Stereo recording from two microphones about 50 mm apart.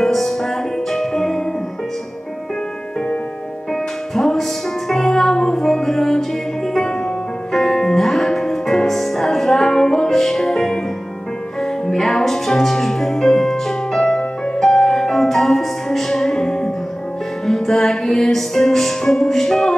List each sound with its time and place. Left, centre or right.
0.0 s music: centre
4.1 s music: centre